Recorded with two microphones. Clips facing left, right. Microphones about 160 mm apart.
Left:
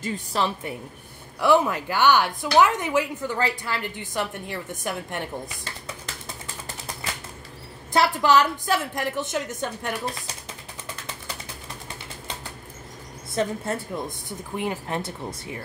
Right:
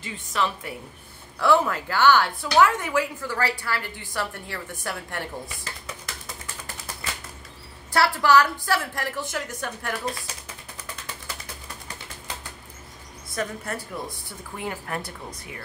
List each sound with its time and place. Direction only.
0.0 s a woman's voice: 35° left (ahead or behind)
1.4 s a woman's voice: 15° left (ahead or behind)
7.9 s a woman's voice: 20° left (ahead or behind)
13.3 s a woman's voice: 25° left (ahead or behind)